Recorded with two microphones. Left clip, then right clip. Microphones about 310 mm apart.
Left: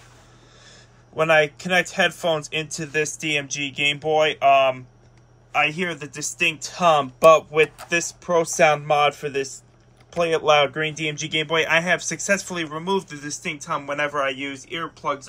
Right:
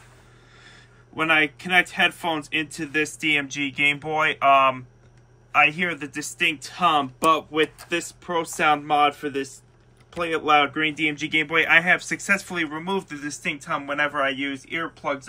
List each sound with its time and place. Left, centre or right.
0.7 s speech: centre